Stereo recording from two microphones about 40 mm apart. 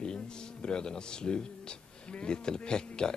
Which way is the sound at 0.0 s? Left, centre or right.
Left.